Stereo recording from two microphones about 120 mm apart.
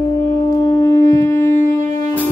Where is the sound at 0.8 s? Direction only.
25° left (ahead or behind).